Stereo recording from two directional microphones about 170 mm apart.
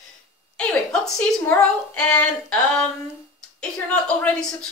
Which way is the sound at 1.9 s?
10° left (ahead or behind).